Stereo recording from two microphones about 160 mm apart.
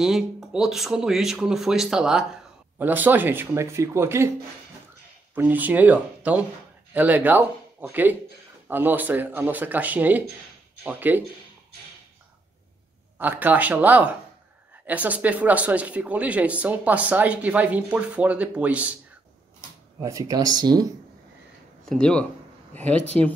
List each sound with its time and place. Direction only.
0.0 s speech: 5° right (ahead or behind)
5.3 s speech: 10° right (ahead or behind)
13.2 s speech: 10° right (ahead or behind)
20.0 s speech: 20° right (ahead or behind)
21.8 s speech: 5° left (ahead or behind)